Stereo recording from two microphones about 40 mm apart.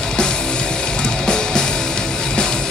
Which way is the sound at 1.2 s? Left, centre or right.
Centre.